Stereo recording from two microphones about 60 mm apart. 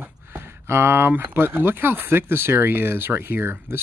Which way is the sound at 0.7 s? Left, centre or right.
Right.